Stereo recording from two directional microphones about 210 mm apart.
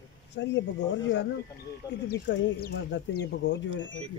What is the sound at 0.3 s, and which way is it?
Speech, 55° left (ahead or behind).